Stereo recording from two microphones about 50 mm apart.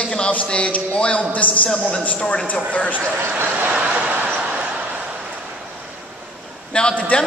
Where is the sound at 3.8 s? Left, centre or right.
Right.